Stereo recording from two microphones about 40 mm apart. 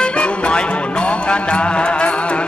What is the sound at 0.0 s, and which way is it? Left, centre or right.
Music, left.